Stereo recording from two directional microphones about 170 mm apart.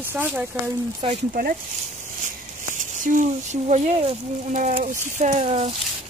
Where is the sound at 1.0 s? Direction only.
35° right (ahead or behind).